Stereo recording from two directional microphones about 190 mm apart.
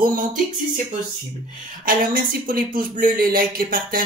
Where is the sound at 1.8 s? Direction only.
50° right (ahead or behind).